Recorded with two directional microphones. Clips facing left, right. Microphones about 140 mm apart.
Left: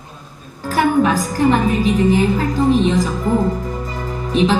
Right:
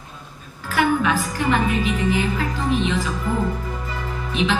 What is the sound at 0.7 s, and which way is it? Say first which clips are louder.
A woman's voice: left 4 dB; 40° left (ahead or behind).